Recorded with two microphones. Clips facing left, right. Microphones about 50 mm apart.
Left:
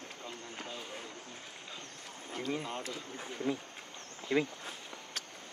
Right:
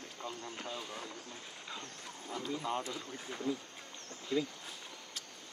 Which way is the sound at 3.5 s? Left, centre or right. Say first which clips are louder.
Left 2 dB; left.